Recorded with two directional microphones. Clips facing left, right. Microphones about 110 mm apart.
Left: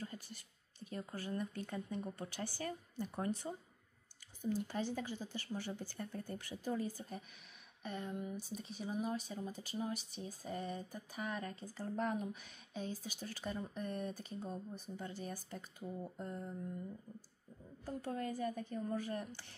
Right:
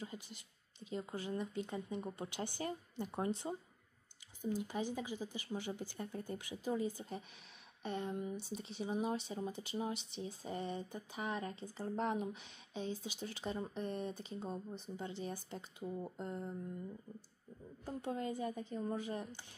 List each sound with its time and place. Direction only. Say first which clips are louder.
0.0 s speech: even; 15° right (ahead or behind)
7.8 s speech: right 3 dB; 30° right (ahead or behind)
17.8 s speech: right 1 dB; 20° right (ahead or behind)